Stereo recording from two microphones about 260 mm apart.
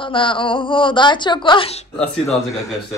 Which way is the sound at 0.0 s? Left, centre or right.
Centre.